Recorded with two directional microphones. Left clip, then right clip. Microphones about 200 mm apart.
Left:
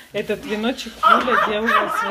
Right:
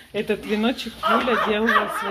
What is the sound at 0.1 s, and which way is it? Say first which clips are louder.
Speech: even; 15° right (ahead or behind).